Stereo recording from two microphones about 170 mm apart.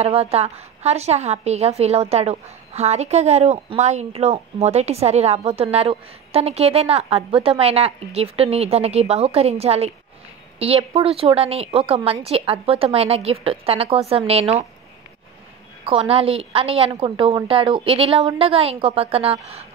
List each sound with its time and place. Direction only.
0.0 s a woman's voice: 35° right (ahead or behind)
15.8 s a woman's voice: 35° right (ahead or behind)